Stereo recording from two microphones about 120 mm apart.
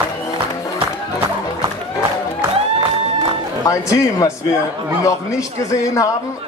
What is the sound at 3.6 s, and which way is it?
A man's voice, 30° left (ahead or behind).